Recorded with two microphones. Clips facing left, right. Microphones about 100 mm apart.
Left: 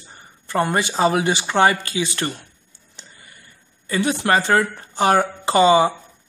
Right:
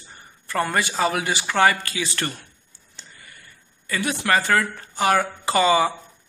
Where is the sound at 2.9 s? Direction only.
25° left (ahead or behind).